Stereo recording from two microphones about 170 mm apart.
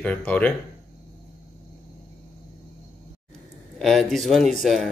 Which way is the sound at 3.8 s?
Centre (ahead or behind).